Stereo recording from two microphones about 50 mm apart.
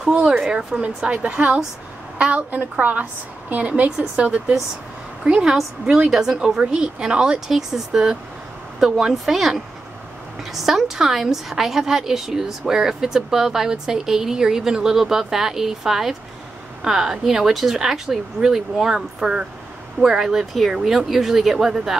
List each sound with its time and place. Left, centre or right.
0.4 s a woman's voice: centre